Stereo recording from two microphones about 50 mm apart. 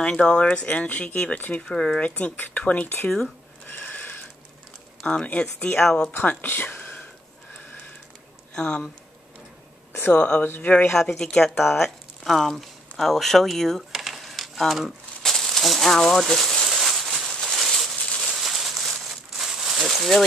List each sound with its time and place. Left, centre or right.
0.0 s speech: left
1.6 s speech: centre
2.0 s speech: left
3.7 s a sound: left
5.0 s speech: left
6.4 s a sound: left
8.5 s speech: centre
10.1 s speech: left
10.9 s speech: centre
13.9 s crumpling: centre
16.6 s a sound: centre